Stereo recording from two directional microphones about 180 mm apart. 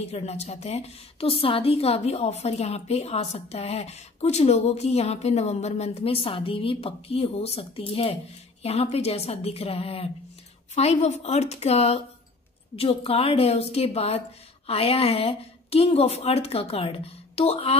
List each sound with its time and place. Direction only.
0.0 s a woman's voice: 35° left (ahead or behind)